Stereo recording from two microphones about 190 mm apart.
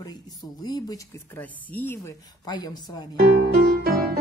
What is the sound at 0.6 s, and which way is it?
Speech, 20° left (ahead or behind).